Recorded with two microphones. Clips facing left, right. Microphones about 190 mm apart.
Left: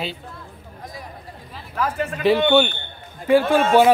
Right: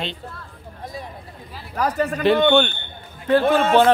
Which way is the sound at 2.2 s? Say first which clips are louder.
Even; 5° left (ahead or behind).